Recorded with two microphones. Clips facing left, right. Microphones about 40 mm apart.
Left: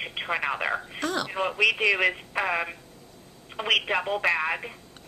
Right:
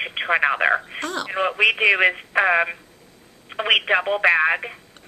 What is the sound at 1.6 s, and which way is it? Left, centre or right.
Speech, right.